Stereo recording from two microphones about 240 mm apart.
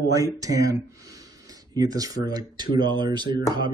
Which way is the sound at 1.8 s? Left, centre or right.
Centre.